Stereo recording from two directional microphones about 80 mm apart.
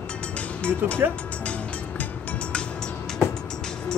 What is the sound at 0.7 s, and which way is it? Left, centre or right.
Speech, centre.